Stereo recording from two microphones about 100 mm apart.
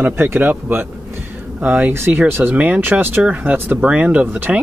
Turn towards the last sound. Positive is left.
turn(degrees=-20)  # may be behind; listen again after turning